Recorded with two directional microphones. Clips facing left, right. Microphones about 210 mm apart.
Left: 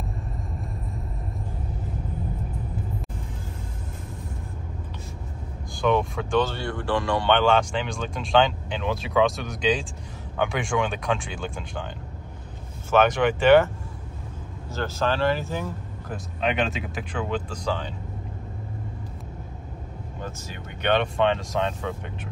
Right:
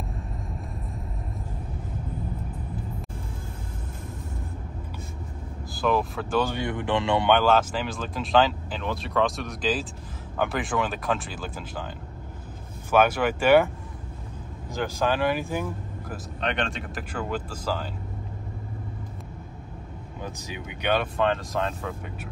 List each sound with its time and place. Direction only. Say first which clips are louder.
5.7 s speech: left 2 dB; 5° right (ahead or behind)
6.4 s speech: right 1 dB; 15° right (ahead or behind)
7.2 s speech: left 1 dB; 5° right (ahead or behind)
12.9 s speech: left 1 dB; 10° right (ahead or behind)
14.7 s speech: even; 15° right (ahead or behind)
16.3 s speech: left 4 dB; 5° left (ahead or behind)
20.2 s speech: right 1 dB; 15° right (ahead or behind)